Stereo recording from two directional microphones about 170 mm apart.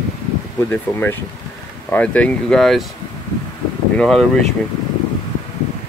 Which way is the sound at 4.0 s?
5° left (ahead or behind).